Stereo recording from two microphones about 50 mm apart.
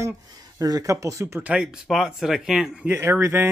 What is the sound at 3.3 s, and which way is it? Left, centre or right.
Speech, right.